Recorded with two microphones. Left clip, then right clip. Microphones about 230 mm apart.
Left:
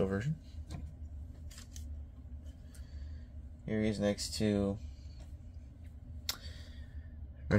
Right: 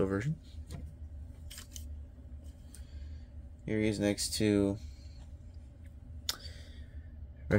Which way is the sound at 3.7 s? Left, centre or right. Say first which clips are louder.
Right 2 dB; right.